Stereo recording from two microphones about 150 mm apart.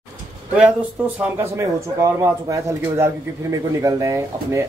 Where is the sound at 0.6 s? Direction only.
10° right (ahead or behind).